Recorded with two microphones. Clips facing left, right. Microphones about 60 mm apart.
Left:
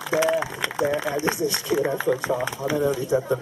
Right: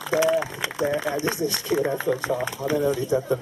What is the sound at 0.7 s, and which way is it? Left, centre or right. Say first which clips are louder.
Speech: left 1 dB; centre.